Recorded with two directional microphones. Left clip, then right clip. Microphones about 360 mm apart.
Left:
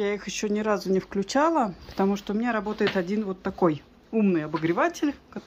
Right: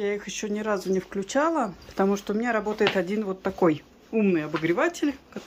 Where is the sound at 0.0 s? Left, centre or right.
Centre.